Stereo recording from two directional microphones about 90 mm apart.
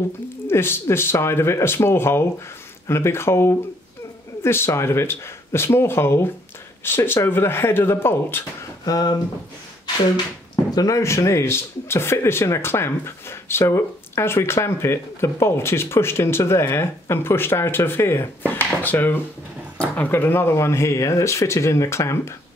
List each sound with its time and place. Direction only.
0.5 s speech: 25° left (ahead or behind)
8.8 s speech: 45° left (ahead or behind)
10.7 s speech: 40° left (ahead or behind)